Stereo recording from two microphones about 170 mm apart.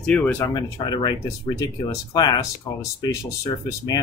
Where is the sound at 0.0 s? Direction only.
10° left (ahead or behind).